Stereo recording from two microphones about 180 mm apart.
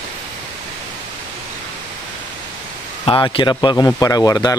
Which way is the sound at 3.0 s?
30° left (ahead or behind).